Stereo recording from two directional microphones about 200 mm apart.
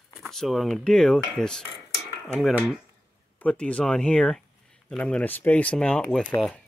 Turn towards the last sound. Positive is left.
turn(degrees=5)  # may be behind; listen again after turning